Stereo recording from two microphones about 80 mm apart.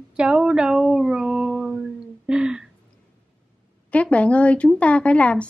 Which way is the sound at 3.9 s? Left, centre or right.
Centre.